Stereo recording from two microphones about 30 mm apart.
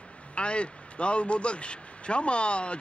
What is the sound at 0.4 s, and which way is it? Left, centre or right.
A man's voice, left.